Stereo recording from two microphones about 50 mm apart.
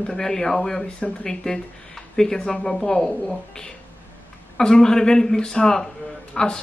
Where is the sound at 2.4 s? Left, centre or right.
Left.